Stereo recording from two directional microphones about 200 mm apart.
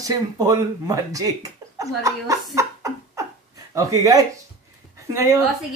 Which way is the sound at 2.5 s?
15° right (ahead or behind).